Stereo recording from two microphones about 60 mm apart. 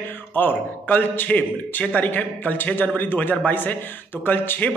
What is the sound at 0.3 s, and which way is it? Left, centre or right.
A man's voice, left.